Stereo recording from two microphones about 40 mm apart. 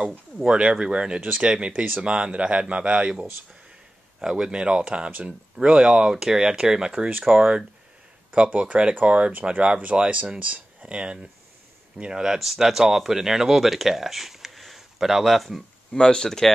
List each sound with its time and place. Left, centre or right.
0.5 s speech: right
4.2 s speech: centre
8.3 s speech: right
12.1 s speech: centre
16.0 s speech: centre